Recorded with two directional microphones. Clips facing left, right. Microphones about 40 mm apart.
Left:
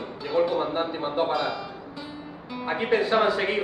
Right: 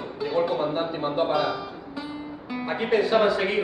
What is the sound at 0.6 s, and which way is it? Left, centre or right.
Speech, centre.